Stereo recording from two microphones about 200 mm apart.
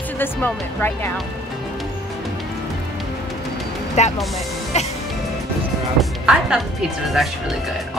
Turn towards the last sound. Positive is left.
turn(degrees=0)  # may be behind; listen again after turning